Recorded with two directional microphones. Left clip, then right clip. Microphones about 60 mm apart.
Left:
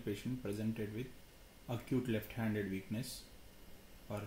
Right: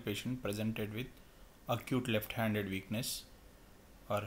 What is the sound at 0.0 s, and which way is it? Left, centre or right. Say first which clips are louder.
Speech: right 3 dB; right.